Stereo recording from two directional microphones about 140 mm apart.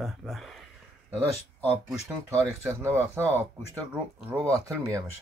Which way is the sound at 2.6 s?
20° right (ahead or behind).